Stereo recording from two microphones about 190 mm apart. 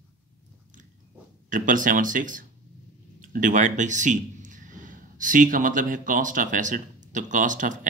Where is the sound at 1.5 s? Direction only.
45° right (ahead or behind).